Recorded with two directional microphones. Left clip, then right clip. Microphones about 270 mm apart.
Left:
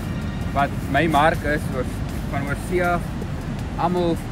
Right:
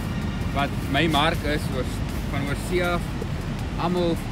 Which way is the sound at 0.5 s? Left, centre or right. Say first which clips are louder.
Left 4 dB; centre.